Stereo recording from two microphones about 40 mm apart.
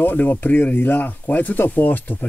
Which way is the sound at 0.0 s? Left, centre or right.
Left.